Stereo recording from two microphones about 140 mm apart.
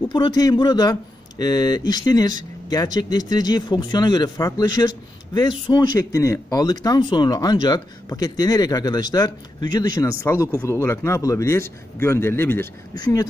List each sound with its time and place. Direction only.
0.1 s speech: 30° left (ahead or behind)
13.0 s speech: 25° left (ahead or behind)